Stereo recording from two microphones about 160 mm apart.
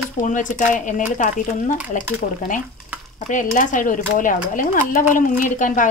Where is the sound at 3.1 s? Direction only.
55° left (ahead or behind).